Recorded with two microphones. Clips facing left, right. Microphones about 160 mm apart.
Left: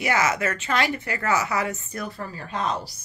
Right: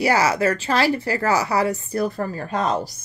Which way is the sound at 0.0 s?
35° right (ahead or behind).